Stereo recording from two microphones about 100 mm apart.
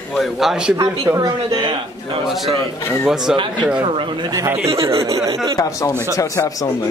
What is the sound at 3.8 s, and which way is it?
Speech, 55° right (ahead or behind).